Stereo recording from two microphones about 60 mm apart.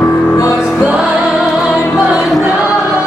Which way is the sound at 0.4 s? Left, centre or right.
Left.